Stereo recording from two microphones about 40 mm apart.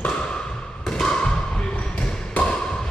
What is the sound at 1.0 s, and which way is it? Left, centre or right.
Thump, centre.